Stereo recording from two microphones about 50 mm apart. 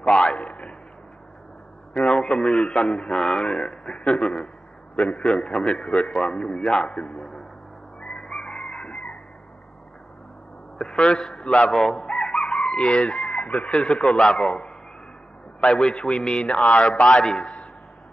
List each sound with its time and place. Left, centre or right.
0.0 s a sound: centre
2.0 s a sound: centre
2.7 s a man's voice: centre
5.7 s a man's voice: left
7.1 s speech: centre
8.2 s chicken: centre
10.8 s a man's voice: centre
11.4 s a man's voice: left
11.7 s chicken: centre
13.3 s chicken: left
13.7 s a man's voice: centre
15.6 s a man's voice: centre
16.4 s a man's voice: left
16.8 s a man's voice: centre